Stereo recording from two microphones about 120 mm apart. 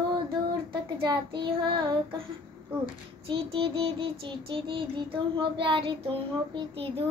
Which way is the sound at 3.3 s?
45° right (ahead or behind).